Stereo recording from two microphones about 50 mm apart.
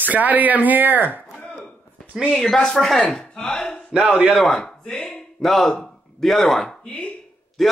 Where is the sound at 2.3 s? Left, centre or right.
Centre.